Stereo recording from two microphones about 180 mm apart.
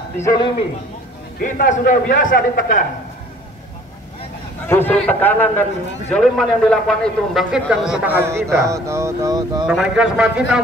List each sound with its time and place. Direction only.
0.2 s speech: 20° left (ahead or behind)
1.4 s a man's voice: 50° left (ahead or behind)
4.6 s a man's voice: 10° left (ahead or behind); by 9.7 s 20° right (ahead or behind)
9.7 s a man's voice: 5° right (ahead or behind)